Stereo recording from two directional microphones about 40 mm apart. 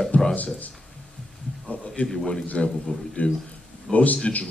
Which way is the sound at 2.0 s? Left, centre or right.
Left.